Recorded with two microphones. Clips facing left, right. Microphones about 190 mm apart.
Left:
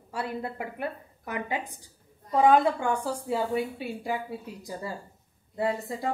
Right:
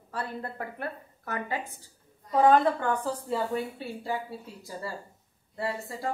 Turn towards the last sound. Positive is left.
turn(degrees=20)  # may be behind; listen again after turning